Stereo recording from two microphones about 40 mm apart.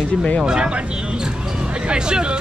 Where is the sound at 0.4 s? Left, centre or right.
Centre.